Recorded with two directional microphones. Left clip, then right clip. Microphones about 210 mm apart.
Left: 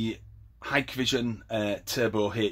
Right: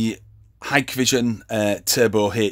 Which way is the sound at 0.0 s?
50° right (ahead or behind).